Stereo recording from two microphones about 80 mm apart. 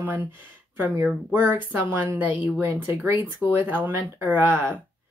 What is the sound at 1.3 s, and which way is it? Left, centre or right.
Speech, right.